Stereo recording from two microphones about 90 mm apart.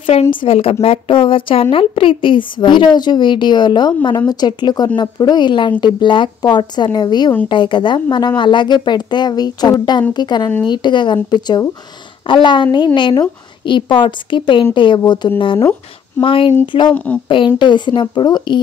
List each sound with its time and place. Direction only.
0.0 s a woman's voice: 70° left (ahead or behind)
16.2 s speech: 75° left (ahead or behind)
16.6 s a woman's voice: 60° left (ahead or behind)
16.9 s speech: 15° left (ahead or behind)
17.6 s a woman's voice: 60° left (ahead or behind)